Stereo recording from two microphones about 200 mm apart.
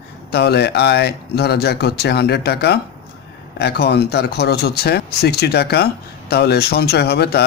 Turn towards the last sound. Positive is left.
turn(degrees=55)  # may be behind; listen again after turning